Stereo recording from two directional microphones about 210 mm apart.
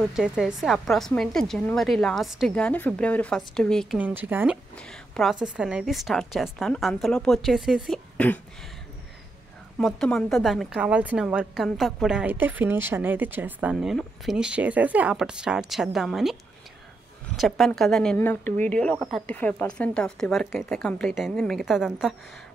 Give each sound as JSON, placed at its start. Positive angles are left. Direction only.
{"t": 0.1, "sound": "a woman's voice", "side_deg": -5}
{"t": 4.0, "sound": "speech", "side_deg": -10}
{"t": 4.7, "sound": "a woman's voice", "side_deg": 5}
{"t": 9.8, "sound": "a woman's voice", "side_deg": 0}
{"t": 17.4, "sound": "a woman's voice", "side_deg": 0}